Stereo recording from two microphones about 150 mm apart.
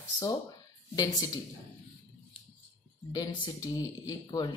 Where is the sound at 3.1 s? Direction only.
30° left (ahead or behind).